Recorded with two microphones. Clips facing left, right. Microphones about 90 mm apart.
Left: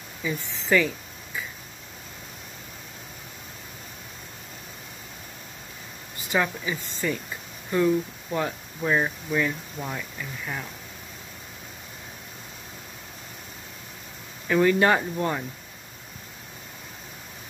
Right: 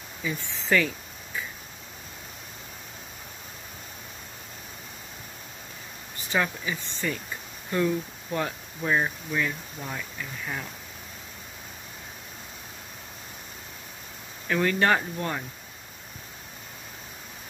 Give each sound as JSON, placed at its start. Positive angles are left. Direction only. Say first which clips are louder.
{"t": 0.2, "sound": "speech", "louder": "left 2 dB", "side_deg": 5}
{"t": 6.3, "sound": "speech", "louder": "left 2 dB", "side_deg": 10}
{"t": 8.8, "sound": "speech", "louder": "left 2 dB", "side_deg": 0}
{"t": 14.5, "sound": "speech", "louder": "left 3 dB", "side_deg": 15}